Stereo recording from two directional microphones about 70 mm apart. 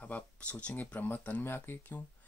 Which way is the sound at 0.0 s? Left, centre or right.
Centre.